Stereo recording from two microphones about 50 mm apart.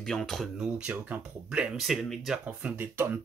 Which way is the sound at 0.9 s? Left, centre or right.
Right.